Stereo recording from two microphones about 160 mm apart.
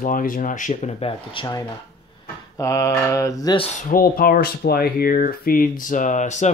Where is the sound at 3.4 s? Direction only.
30° left (ahead or behind).